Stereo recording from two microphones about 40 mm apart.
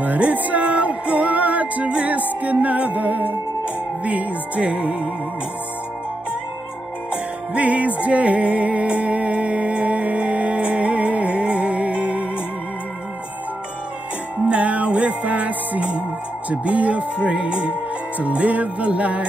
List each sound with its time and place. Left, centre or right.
0.0 s music: right
7.5 s music: right
14.4 s music: right
16.4 s speech: right
18.2 s music: right